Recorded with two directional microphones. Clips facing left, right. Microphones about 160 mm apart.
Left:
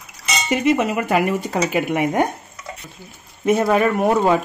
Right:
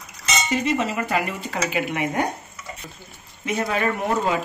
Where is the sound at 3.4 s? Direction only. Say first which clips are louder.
Left 7 dB; 55° left (ahead or behind).